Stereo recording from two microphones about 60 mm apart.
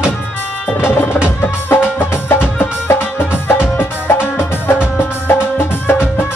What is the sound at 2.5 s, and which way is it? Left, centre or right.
Music, left.